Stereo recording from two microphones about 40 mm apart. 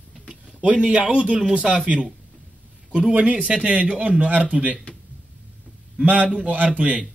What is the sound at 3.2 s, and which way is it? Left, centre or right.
A man's voice, right.